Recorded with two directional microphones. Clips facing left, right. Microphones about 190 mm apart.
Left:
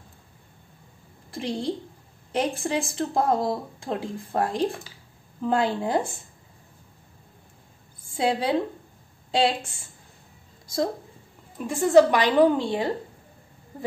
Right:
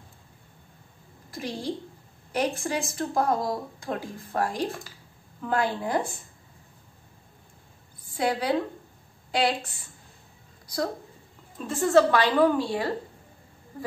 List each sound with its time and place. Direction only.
2.3 s speech: 30° left (ahead or behind)
8.2 s speech: 25° left (ahead or behind)
10.7 s a woman's voice: 25° left (ahead or behind)